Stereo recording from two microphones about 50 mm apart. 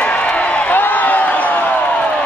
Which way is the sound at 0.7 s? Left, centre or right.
Left.